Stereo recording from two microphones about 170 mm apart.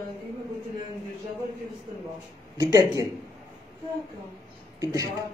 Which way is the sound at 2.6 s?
20° right (ahead or behind).